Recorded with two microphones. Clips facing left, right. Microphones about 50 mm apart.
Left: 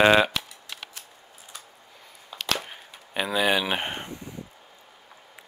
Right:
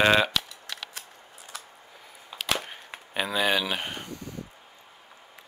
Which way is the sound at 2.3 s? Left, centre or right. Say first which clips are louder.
Even; centre.